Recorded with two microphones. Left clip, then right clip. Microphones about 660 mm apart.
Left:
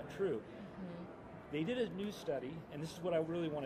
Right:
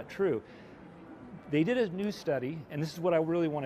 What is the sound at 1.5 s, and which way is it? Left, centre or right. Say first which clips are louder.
Speech: right 10 dB; right.